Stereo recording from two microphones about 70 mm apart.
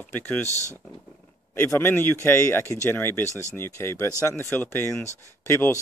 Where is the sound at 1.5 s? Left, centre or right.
Left.